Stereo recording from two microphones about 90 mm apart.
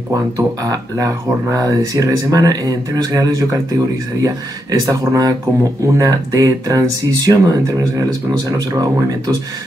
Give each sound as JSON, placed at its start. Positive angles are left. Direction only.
{"t": 0.1, "sound": "speech", "side_deg": -40}